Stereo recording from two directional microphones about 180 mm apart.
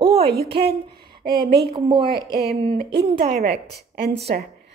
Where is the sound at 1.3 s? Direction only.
60° right (ahead or behind).